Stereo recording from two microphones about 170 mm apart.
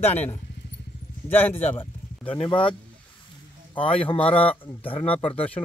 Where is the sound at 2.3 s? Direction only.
30° left (ahead or behind).